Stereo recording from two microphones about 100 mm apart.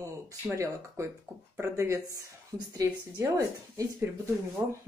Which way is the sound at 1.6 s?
30° right (ahead or behind).